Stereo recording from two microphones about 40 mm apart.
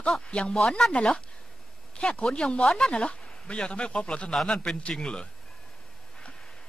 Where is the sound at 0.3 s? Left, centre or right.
Left.